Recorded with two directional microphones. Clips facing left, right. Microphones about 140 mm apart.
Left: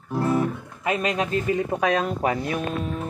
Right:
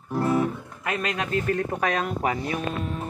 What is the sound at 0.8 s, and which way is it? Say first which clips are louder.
Speech: left 4 dB; 10° left (ahead or behind).